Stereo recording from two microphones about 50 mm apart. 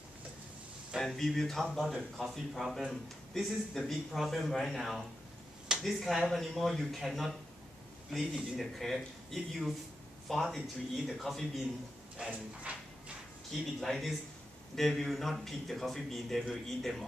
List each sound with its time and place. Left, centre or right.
1.0 s a man's voice: centre
12.7 s a sound: right
13.5 s a man's voice: centre